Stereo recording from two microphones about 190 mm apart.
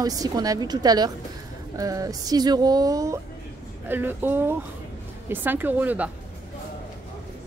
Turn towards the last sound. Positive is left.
turn(degrees=-10)  # may be behind; listen again after turning